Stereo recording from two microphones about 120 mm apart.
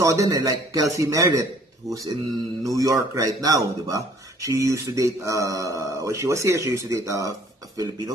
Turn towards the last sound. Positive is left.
turn(degrees=-30)  # may be behind; listen again after turning